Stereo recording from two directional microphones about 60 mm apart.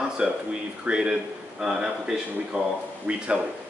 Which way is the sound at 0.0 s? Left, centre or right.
Centre.